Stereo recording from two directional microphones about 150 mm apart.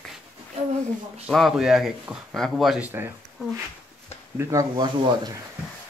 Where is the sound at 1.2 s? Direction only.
Centre (ahead or behind).